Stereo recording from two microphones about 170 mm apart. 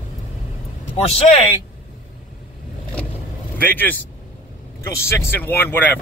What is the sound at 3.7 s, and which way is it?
A man's voice, 10° left (ahead or behind).